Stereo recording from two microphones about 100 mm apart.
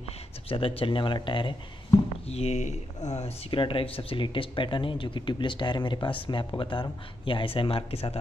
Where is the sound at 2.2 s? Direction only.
90° left.